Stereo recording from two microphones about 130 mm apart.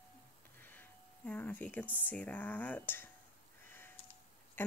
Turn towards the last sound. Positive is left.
turn(degrees=15)  # may be behind; listen again after turning